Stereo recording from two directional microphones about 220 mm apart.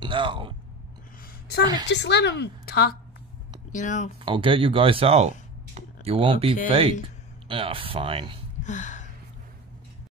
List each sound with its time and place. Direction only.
0.0 s speech: 20° right (ahead or behind)
1.9 s a woman's voice: 50° left (ahead or behind)
3.7 s speech: 35° left (ahead or behind)
4.2 s speech: 25° right (ahead or behind)
8.6 s a sound: 35° left (ahead or behind)